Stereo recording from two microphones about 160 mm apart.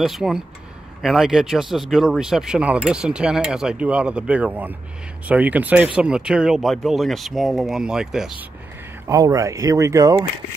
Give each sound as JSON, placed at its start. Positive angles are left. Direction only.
{"t": 0.0, "sound": "speech", "side_deg": 0}
{"t": 9.1, "sound": "speech", "side_deg": -20}